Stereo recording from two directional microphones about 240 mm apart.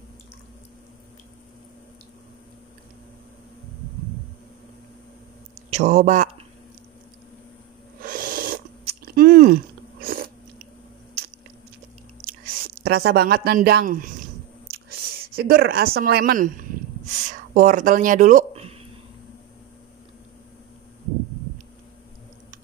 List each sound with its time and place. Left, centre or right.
5.7 s speech: right
8.0 s chewing: right
12.3 s speech: right
14.7 s a sound: right